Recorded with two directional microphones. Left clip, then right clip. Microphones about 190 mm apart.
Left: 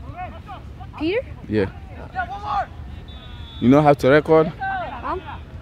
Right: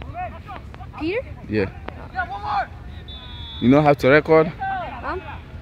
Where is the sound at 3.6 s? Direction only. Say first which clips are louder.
Left 1 dB; 5° left (ahead or behind).